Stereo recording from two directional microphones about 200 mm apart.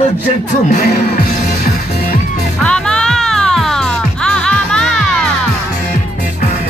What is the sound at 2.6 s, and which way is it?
Music, 5° left (ahead or behind).